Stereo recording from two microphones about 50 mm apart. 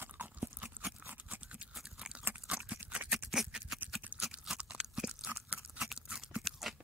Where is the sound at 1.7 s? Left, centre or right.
Centre.